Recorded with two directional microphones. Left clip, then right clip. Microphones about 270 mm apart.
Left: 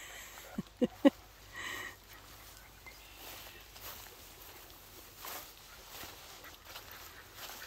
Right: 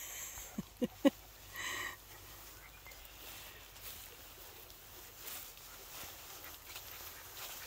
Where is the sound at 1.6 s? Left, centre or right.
Centre.